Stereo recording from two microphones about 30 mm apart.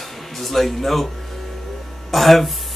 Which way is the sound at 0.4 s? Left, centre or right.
Centre.